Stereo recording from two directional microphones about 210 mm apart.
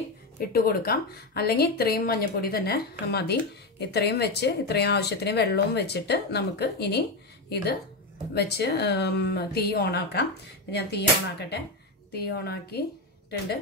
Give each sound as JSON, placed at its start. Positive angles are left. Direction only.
{"t": 0.4, "sound": "speech", "side_deg": 45}